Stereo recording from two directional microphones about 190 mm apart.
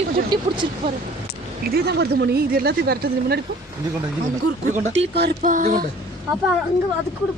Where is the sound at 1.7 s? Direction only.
60° right (ahead or behind).